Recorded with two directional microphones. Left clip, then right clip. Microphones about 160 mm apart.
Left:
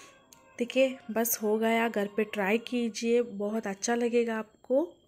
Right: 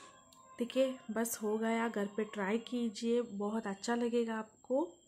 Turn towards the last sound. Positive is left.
turn(degrees=20)  # may be behind; listen again after turning